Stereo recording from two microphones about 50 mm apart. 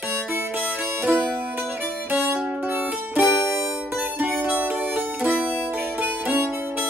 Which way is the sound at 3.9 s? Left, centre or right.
Right.